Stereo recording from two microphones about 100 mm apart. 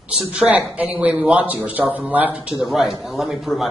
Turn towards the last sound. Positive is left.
turn(degrees=0)  # may be behind; listen again after turning